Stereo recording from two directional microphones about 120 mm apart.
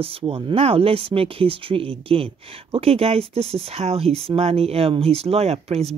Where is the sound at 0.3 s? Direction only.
55° right (ahead or behind).